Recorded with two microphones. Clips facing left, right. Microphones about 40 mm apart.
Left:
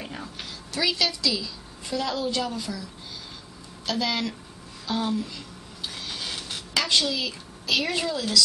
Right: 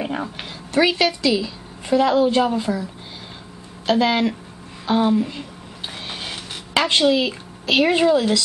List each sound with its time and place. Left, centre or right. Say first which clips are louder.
0.0 s a woman's voice: right 10 dB; right
5.9 s a sound: right 3 dB; right
6.7 s speech: right 8 dB; right